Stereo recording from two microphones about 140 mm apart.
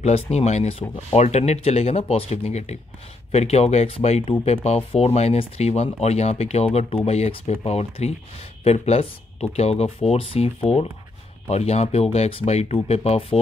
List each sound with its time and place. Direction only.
0.0 s speech: 50° left (ahead or behind)